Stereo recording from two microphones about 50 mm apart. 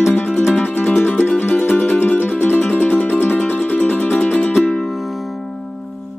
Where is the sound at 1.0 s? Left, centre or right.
Left.